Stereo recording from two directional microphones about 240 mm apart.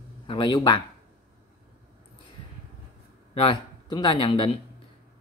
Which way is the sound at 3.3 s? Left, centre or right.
Left.